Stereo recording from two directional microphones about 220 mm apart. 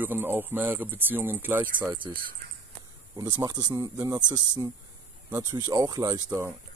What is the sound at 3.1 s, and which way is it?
Speech, 15° right (ahead or behind).